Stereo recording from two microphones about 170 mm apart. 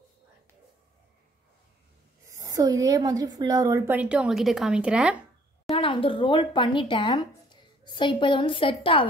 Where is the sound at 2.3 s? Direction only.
20° right (ahead or behind).